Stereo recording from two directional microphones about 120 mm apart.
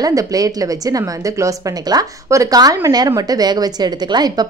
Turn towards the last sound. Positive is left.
turn(degrees=-35)  # may be behind; listen again after turning